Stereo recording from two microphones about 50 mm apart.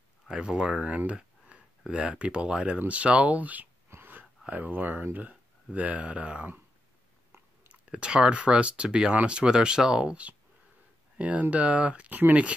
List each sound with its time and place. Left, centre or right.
0.3 s speech: centre
0.8 s speech: right
4.0 s a sound: right
4.5 s speech: right
7.9 s speech: centre; by 12.4 s right